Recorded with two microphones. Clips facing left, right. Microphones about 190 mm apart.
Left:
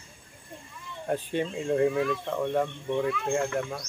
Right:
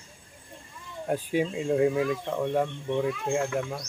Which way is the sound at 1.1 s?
10° right (ahead or behind).